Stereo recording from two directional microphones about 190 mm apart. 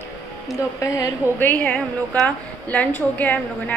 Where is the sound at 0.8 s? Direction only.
15° left (ahead or behind).